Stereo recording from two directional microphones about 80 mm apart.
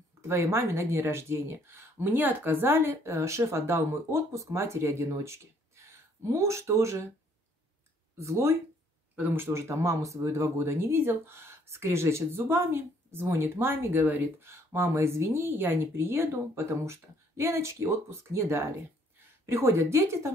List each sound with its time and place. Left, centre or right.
0.2 s speech: right
8.2 s speech: right
9.1 s speech: right
14.5 s speech: right